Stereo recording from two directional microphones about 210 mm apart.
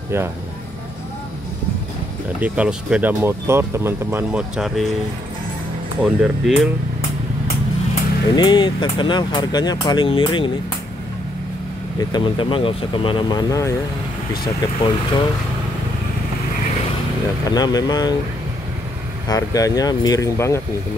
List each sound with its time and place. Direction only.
2.4 s speech: 5° right (ahead or behind)
6.2 s speech: centre (ahead or behind)
7.9 s speech: 20° left (ahead or behind)
12.0 s speech: 20° left (ahead or behind)
17.5 s speech: 20° left (ahead or behind)
19.2 s speech: 15° left (ahead or behind)